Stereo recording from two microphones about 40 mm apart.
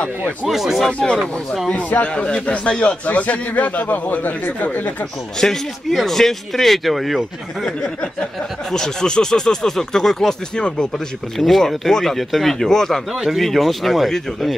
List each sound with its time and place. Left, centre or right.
0.5 s speech: centre
0.9 s speech: left
1.7 s a man's voice: left
2.0 s a man's voice: left
5.4 s speech: centre
6.0 s speech: centre
7.6 s speech: centre
13.1 s speech: centre
13.4 s speech: centre